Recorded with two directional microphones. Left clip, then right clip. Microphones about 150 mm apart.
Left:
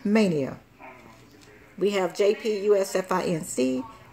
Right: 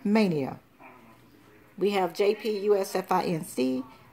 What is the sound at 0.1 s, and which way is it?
Speech, 15° right (ahead or behind).